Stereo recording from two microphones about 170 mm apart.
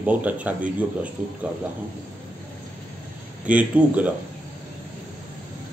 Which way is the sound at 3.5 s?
10° right (ahead or behind).